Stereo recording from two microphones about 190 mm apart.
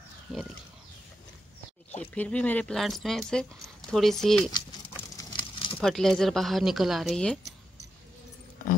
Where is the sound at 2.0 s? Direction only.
5° left (ahead or behind).